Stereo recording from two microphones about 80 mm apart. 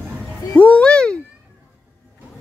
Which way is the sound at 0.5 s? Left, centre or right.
Centre.